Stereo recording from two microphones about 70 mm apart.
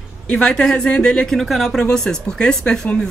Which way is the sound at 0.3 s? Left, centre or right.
Centre.